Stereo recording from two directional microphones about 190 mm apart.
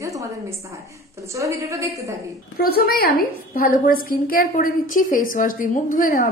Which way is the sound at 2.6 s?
55° left (ahead or behind).